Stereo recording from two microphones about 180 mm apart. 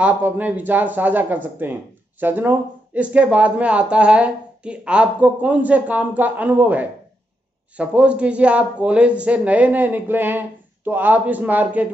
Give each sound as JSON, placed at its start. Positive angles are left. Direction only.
{"t": 0.0, "sound": "speech", "side_deg": -10}